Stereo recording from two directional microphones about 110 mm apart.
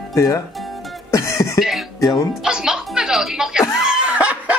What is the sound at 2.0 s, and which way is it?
Speech, 30° left (ahead or behind).